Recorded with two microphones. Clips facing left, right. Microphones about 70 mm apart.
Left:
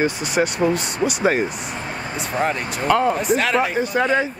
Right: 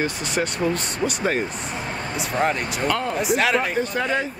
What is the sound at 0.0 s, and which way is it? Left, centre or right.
Speech, centre.